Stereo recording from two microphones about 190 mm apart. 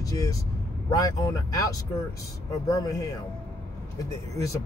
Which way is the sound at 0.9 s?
15° left (ahead or behind).